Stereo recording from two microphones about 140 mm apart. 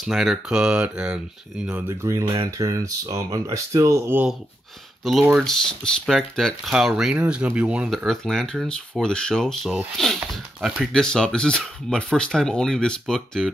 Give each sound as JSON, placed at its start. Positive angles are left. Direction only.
{"t": 0.0, "sound": "speech", "side_deg": 0}
{"t": 2.0, "sound": "speech", "side_deg": -25}
{"t": 5.1, "sound": "speech", "side_deg": 0}